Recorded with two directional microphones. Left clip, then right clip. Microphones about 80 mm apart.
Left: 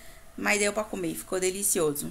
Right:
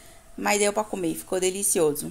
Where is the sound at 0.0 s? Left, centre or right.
Right.